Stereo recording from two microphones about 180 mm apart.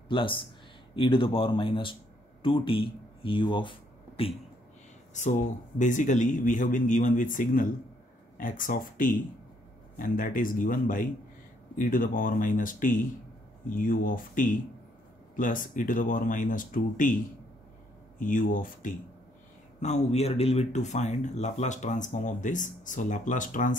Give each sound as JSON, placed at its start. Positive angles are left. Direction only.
{"t": 0.1, "sound": "speech", "side_deg": 30}
{"t": 5.8, "sound": "speech", "side_deg": 45}
{"t": 18.2, "sound": "speech", "side_deg": 50}
{"t": 19.8, "sound": "speech", "side_deg": 40}